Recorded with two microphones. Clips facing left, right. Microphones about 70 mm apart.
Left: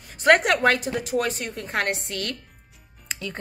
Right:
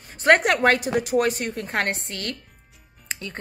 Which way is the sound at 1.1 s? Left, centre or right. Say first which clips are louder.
Right 3 dB; right.